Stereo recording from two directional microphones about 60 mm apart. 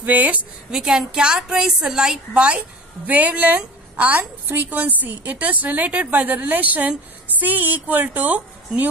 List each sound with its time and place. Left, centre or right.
0.0 s a woman's voice: right
0.7 s a woman's voice: centre
3.1 s a woman's voice: right